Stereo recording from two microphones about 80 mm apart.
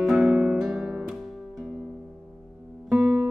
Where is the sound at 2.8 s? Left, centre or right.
Centre.